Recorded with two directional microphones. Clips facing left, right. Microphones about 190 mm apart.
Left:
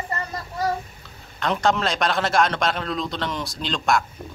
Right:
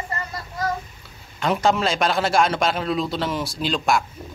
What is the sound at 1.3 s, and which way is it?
A man's voice, 5° right (ahead or behind).